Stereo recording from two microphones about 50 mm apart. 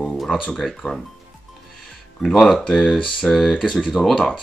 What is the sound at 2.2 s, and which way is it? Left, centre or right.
Speech, centre.